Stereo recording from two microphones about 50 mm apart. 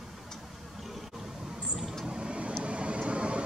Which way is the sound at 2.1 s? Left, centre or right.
Centre.